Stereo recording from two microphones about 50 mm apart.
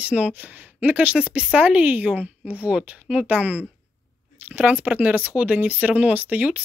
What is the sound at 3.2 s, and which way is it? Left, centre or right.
Speech, right.